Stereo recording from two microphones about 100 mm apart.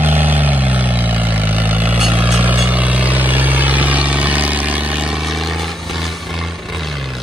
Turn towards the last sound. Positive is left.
turn(degrees=0)  # may be behind; listen again after turning